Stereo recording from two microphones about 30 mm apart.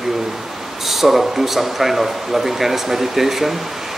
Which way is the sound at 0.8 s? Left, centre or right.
Centre.